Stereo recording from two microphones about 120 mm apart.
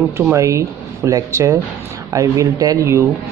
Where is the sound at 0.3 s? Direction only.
25° right (ahead or behind).